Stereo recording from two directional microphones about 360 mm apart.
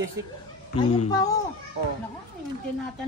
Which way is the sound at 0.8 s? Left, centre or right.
Centre.